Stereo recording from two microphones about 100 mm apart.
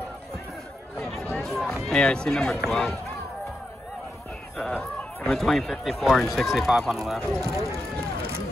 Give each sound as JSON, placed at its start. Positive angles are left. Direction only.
{"t": 0.9, "sound": "a sound", "side_deg": 5}
{"t": 1.3, "sound": "run", "side_deg": 5}
{"t": 1.9, "sound": "speech", "side_deg": 10}
{"t": 4.7, "sound": "speech", "side_deg": 10}
{"t": 7.5, "sound": "speech", "side_deg": -30}